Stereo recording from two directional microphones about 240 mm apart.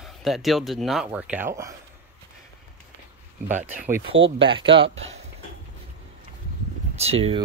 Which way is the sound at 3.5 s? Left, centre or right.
Right.